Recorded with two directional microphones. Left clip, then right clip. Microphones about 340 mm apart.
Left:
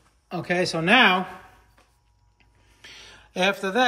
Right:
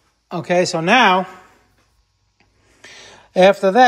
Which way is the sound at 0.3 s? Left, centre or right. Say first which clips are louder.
Right 8 dB; centre.